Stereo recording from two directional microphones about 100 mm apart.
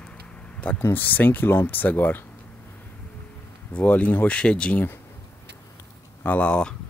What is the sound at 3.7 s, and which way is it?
Speech, 15° left (ahead or behind).